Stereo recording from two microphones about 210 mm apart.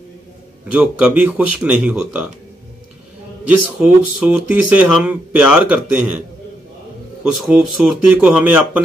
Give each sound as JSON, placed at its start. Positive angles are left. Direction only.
{"t": 0.7, "sound": "speech", "side_deg": -5}
{"t": 3.4, "sound": "speech", "side_deg": -5}
{"t": 7.3, "sound": "speech", "side_deg": 0}